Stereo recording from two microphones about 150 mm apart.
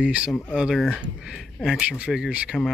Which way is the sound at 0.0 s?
10° right (ahead or behind).